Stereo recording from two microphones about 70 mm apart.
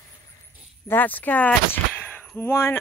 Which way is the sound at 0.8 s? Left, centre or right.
Left.